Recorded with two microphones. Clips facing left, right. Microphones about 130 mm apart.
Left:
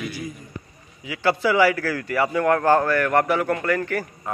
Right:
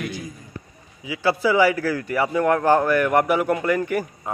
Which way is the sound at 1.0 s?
10° right (ahead or behind).